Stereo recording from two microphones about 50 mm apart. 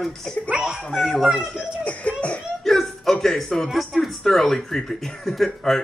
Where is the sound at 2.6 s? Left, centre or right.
Centre.